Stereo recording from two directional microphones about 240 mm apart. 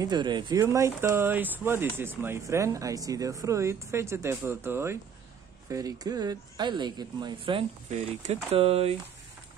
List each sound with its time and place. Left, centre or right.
0.0 s speech: centre